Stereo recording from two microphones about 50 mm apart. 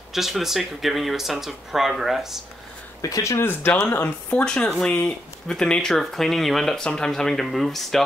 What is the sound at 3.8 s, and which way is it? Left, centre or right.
Speech, left.